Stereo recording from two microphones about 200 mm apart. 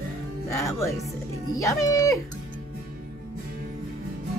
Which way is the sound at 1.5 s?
15° left (ahead or behind).